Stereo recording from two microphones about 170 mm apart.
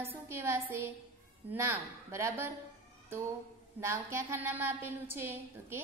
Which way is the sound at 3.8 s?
15° right (ahead or behind).